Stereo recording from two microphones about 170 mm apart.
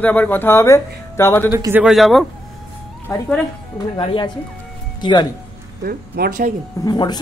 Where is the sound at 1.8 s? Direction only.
Centre (ahead or behind).